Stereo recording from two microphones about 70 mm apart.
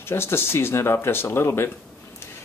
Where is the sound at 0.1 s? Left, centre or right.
Left.